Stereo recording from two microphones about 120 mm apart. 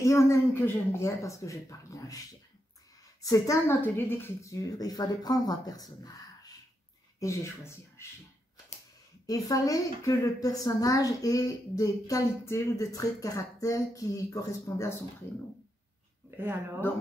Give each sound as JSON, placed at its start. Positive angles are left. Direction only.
{"t": 0.0, "sound": "a woman's voice", "side_deg": 25}
{"t": 9.2, "sound": "a woman's voice", "side_deg": 30}
{"t": 16.3, "sound": "a sound", "side_deg": -20}